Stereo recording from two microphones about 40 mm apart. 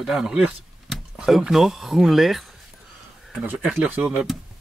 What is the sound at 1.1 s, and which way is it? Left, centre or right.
Speech, centre.